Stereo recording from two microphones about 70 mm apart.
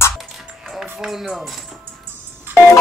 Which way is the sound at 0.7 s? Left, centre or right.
Centre.